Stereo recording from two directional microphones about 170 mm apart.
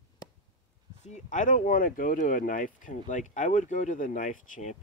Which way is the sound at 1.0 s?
45° left (ahead or behind).